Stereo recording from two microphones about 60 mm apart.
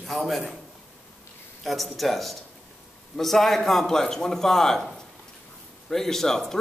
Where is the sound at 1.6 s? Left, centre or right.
Centre.